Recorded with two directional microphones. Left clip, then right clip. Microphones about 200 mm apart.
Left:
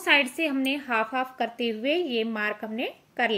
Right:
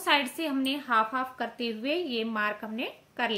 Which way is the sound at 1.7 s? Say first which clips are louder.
Left 4 dB; 20° left (ahead or behind).